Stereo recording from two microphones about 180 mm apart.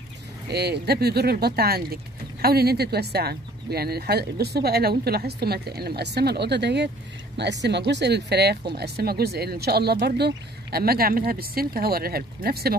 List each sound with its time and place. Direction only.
0.5 s speech: 65° right (ahead or behind)